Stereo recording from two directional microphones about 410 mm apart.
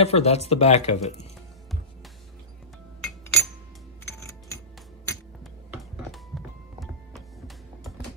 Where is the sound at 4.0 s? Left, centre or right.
Centre.